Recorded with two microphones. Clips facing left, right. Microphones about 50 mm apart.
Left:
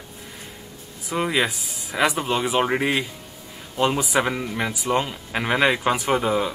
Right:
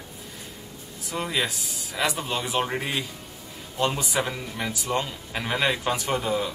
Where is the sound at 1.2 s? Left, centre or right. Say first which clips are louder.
Left 5 dB; left.